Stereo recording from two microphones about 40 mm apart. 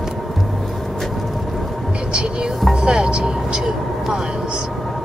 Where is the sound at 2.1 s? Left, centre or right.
Right.